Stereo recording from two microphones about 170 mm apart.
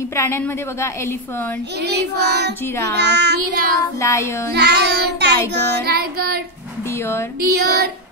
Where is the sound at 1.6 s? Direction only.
80° right.